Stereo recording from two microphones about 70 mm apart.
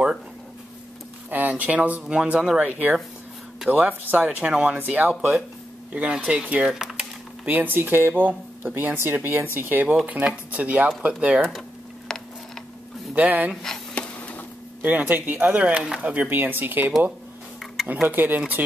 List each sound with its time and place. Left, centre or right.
1.3 s speech: right
4.7 s speech: right
6.7 s a sound: centre
7.4 s speech: right
12.1 s a sound: centre
13.1 s speech: right
13.9 s a sound: centre
14.8 s speech: right
18.0 s speech: right